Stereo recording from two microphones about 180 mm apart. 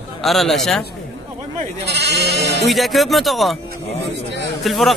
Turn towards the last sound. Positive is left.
turn(degrees=0)  # may be behind; listen again after turning